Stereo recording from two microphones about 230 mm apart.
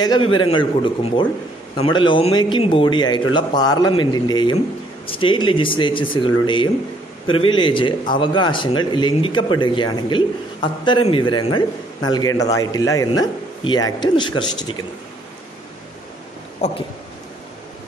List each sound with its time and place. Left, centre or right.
0.0 s a man's voice: centre
16.6 s speech: left